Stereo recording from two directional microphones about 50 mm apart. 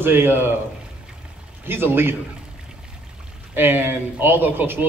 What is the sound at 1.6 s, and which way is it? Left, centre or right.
Speech, right.